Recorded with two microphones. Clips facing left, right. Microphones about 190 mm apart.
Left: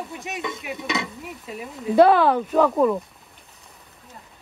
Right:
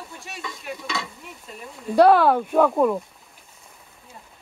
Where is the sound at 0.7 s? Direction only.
20° left (ahead or behind).